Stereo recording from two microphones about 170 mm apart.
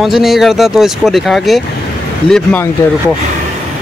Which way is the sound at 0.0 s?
Centre (ahead or behind).